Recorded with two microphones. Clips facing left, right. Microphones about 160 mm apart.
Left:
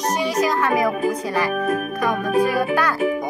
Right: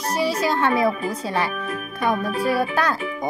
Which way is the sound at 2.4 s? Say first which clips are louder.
Left 1 dB; 25° right (ahead or behind).